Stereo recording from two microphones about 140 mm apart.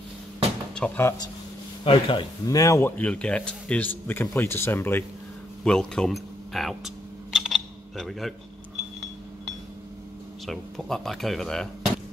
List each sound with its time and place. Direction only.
0.7 s speech: 10° left (ahead or behind)
1.9 s speech: 40° left (ahead or behind)
2.4 s speech: 20° left (ahead or behind)
3.0 s speech: 10° left (ahead or behind)
5.6 s speech: 5° left (ahead or behind)
7.3 s a sound: centre (ahead or behind)
10.4 s speech: centre (ahead or behind)